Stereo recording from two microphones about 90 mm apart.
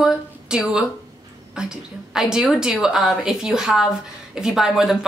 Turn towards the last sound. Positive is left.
turn(degrees=-5)  # may be behind; listen again after turning